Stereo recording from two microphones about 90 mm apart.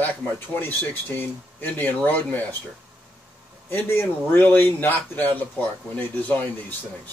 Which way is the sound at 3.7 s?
25° left (ahead or behind).